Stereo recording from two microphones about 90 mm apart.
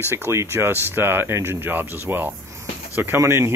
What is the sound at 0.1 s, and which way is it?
Speech, 30° right (ahead or behind).